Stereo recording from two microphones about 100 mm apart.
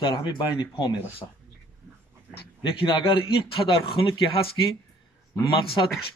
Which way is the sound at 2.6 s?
55° left (ahead or behind).